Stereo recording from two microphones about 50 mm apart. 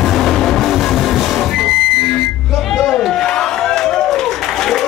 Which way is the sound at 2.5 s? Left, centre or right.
Centre.